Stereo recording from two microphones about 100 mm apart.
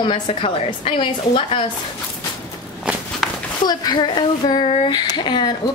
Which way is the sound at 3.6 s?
45° left (ahead or behind).